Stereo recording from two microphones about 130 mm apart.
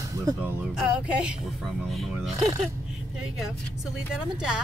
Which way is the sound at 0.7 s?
5° right (ahead or behind).